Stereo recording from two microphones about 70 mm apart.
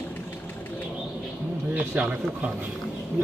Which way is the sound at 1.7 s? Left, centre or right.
Centre.